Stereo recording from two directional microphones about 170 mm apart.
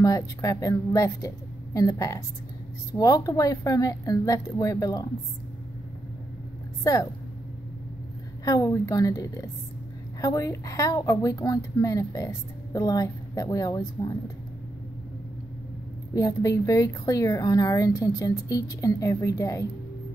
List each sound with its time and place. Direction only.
0.0 s a woman's voice: 20° left (ahead or behind)
6.8 s a woman's voice: 20° left (ahead or behind)
8.5 s a woman's voice: 20° left (ahead or behind)
16.2 s a woman's voice: 20° left (ahead or behind)